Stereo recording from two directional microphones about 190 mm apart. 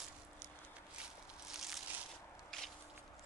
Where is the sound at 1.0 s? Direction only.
Centre (ahead or behind).